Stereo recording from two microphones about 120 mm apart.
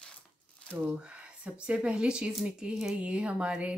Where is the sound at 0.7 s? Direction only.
10° right (ahead or behind).